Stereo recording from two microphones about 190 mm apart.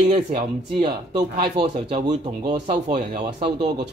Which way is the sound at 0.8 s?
25° right (ahead or behind).